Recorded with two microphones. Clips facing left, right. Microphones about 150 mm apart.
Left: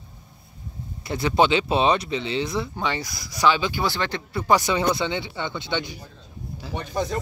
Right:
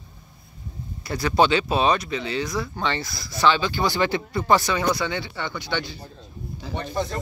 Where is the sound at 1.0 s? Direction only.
20° left (ahead or behind).